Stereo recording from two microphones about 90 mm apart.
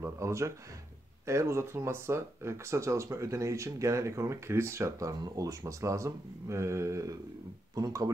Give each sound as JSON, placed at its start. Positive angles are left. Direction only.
{"t": 0.0, "sound": "speech", "side_deg": -30}